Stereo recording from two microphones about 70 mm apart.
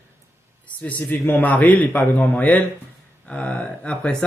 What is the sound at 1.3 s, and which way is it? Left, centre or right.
A man's voice, left.